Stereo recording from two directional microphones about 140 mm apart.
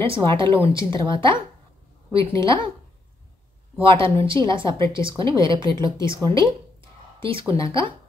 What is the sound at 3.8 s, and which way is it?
Speech, 40° right (ahead or behind).